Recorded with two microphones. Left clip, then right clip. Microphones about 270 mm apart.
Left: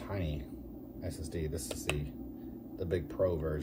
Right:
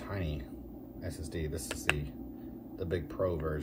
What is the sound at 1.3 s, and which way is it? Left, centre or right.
Speech, right.